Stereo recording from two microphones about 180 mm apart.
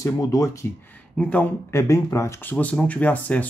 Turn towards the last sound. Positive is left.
turn(degrees=10)  # may be behind; listen again after turning